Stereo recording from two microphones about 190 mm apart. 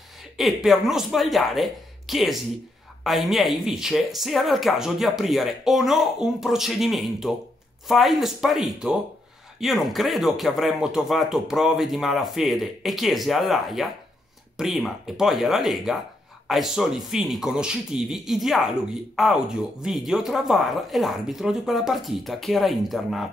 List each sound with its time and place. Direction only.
0.4 s speech: centre (ahead or behind)